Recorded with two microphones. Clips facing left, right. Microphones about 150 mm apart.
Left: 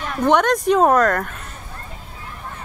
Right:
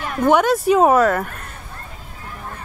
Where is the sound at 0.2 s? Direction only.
5° right (ahead or behind).